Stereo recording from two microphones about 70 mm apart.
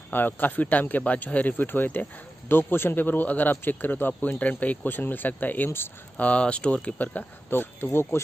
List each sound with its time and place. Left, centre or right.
0.1 s speech: left
6.2 s speech: centre; by 8.2 s left